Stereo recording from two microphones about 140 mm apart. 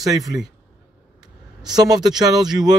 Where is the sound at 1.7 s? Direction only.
30° right (ahead or behind).